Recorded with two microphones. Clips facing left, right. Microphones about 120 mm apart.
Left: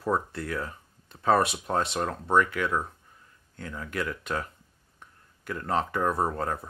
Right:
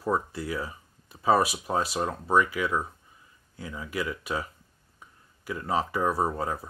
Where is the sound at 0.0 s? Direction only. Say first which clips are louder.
Even; 5° right (ahead or behind).